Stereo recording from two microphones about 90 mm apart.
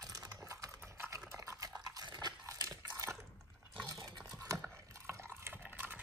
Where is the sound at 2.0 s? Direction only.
50° right (ahead or behind).